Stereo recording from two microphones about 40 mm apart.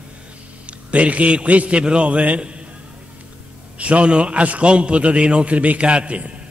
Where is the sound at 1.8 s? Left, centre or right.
Right.